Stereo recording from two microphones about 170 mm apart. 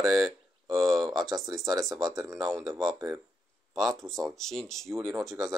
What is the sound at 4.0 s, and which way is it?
Speech, centre (ahead or behind).